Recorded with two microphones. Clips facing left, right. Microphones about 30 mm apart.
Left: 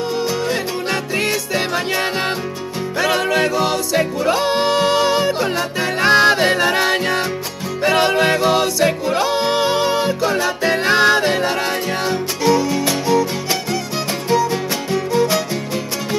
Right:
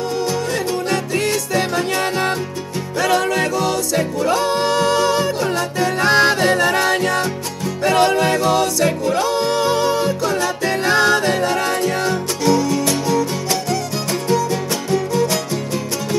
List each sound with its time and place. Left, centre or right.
0.8 s music: centre